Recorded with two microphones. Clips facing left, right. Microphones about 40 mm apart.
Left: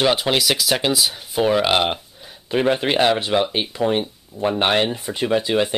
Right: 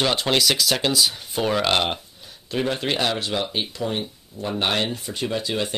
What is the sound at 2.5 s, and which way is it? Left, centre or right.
Speech, left.